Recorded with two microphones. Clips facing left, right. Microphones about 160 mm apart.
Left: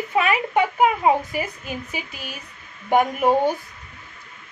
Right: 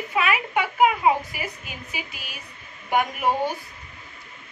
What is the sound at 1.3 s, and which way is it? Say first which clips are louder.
A woman's voice: left 7 dB; 45° left (ahead or behind).